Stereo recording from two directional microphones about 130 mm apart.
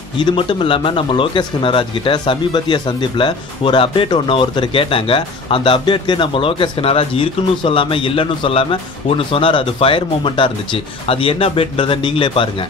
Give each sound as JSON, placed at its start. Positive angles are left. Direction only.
{"t": 0.2, "sound": "speech", "side_deg": 40}